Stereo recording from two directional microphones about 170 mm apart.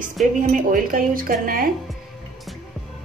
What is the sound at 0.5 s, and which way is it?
Speech, 55° right (ahead or behind).